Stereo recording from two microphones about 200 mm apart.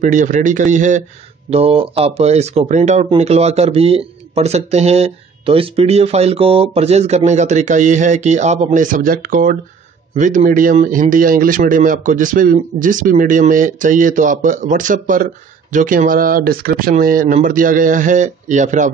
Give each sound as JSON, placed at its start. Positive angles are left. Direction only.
{"t": 0.0, "sound": "speech", "side_deg": -40}